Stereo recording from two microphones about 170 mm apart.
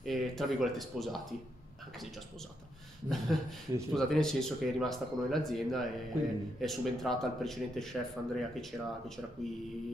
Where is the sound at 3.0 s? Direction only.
Centre (ahead or behind).